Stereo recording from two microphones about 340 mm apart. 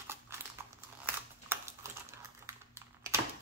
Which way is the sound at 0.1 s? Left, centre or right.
Centre.